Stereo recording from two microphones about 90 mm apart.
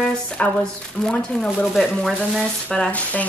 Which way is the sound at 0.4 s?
15° left (ahead or behind).